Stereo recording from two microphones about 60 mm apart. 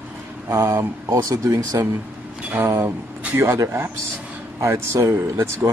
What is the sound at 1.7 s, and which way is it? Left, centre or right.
Speech, right.